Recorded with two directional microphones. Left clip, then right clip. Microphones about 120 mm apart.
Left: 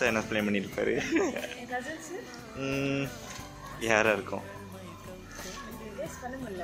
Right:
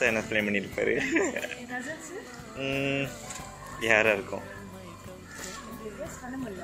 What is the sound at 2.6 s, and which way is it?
Speech, 35° left (ahead or behind).